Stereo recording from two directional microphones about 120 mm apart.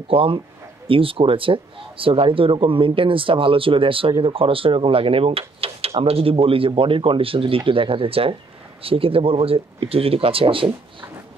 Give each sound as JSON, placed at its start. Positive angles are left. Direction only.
{"t": 0.1, "sound": "speech", "side_deg": -50}